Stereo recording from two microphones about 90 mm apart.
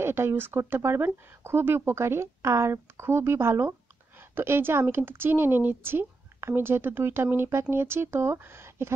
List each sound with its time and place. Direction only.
0.0 s speech: 25° right (ahead or behind)